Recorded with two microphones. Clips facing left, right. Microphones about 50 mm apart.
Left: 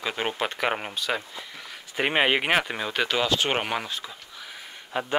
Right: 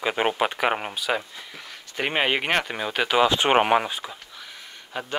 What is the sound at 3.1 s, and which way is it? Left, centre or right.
Speech, centre.